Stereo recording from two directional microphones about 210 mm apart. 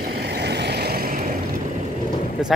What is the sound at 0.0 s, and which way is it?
Vehicle, 50° right (ahead or behind).